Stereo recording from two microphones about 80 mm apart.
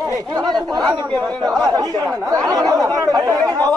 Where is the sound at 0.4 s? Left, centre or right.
Right.